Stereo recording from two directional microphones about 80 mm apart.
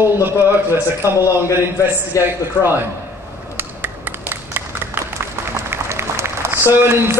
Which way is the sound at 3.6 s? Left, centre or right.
Right.